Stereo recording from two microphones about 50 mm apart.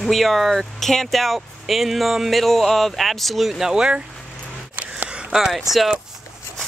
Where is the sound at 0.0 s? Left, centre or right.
Centre.